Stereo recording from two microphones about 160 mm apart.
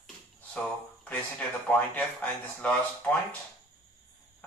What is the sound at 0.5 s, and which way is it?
Speech, 10° left (ahead or behind).